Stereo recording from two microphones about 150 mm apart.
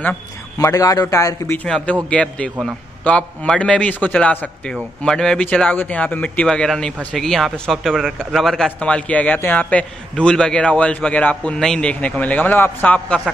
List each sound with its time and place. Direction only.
0.6 s a man's voice: 20° left (ahead or behind)